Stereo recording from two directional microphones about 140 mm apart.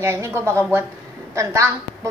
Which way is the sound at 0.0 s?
20° right (ahead or behind).